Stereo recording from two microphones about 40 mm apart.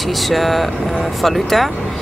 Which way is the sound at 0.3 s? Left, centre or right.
Centre.